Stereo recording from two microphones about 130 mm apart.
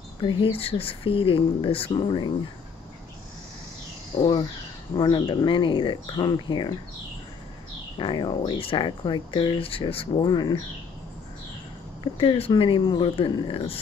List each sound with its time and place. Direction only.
0.2 s speech: 40° left (ahead or behind)
4.9 s speech: 30° left (ahead or behind)
8.0 s speech: 35° left (ahead or behind)
10.2 s speech: 30° left (ahead or behind)
12.0 s speech: 40° left (ahead or behind)